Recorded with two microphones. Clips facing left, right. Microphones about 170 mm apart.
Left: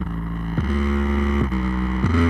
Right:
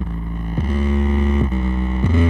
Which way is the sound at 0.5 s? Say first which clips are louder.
Right 1 dB; 10° right (ahead or behind).